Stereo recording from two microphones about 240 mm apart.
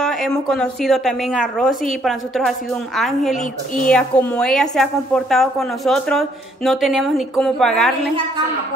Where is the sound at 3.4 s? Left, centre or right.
Left.